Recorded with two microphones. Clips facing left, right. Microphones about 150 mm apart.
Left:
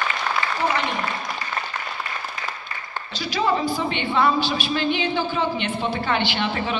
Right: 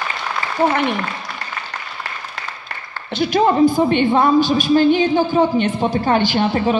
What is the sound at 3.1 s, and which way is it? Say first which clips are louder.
A woman's voice: right 8 dB; 55° right (ahead or behind).